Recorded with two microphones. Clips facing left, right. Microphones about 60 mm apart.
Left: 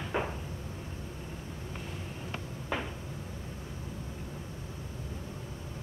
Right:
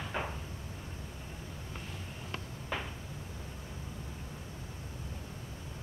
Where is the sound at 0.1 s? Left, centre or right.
Centre.